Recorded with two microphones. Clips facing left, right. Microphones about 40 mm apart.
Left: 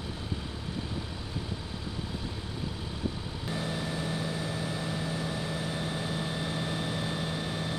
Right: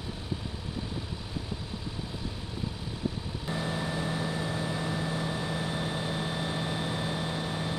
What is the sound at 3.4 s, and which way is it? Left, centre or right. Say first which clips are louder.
Vehicle: right 1 dB; centre.